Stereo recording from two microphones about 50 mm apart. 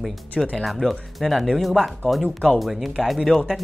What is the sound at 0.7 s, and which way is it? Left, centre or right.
Speech, centre.